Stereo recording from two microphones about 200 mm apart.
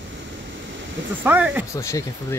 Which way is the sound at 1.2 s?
5° right (ahead or behind).